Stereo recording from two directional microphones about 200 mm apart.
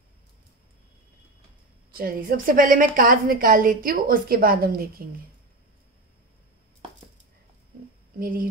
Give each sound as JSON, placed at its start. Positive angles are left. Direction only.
{"t": 1.9, "sound": "a woman's voice", "side_deg": -45}
{"t": 8.2, "sound": "a woman's voice", "side_deg": -45}